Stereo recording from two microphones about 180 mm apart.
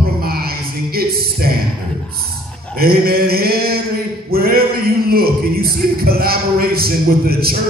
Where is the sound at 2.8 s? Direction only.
55° right (ahead or behind).